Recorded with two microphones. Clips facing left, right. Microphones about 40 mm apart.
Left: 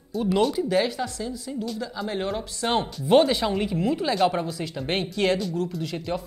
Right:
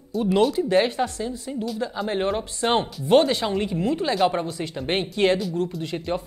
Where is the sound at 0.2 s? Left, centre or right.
Centre.